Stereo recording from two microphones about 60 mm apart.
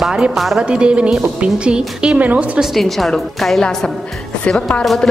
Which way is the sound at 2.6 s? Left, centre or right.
Centre.